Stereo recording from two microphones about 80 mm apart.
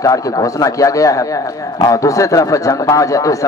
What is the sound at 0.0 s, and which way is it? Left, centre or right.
Speech, left.